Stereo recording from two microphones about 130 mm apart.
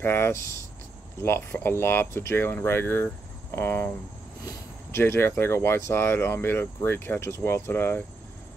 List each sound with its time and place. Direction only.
0.0 s speech: 20° left (ahead or behind)
4.9 s speech: 20° left (ahead or behind)